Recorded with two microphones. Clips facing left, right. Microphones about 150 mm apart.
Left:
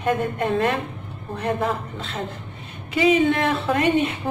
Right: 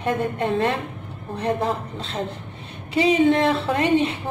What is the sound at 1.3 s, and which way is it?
A woman's voice, 30° right (ahead or behind).